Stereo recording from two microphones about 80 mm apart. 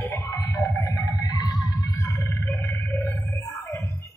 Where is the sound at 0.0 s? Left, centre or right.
Left.